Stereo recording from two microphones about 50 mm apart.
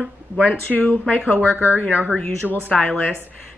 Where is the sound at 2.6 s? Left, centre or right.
Left.